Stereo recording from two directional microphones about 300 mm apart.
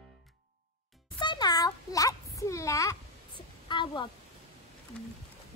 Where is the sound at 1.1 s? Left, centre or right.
Centre.